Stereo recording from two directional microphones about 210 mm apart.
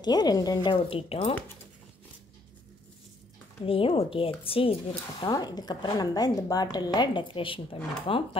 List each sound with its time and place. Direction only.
0.0 s a woman's voice: 20° left (ahead or behind)
3.6 s a woman's voice: 25° left (ahead or behind)